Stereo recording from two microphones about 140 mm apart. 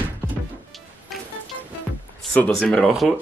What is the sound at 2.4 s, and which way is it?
Speech, 5° left (ahead or behind).